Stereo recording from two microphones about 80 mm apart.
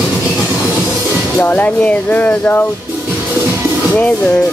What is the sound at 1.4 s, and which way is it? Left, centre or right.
Speech, left.